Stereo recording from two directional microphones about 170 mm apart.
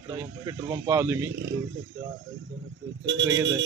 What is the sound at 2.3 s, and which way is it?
Speech, 90° right.